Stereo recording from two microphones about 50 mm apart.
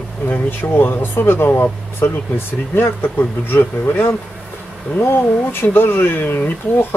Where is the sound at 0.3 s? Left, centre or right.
Left.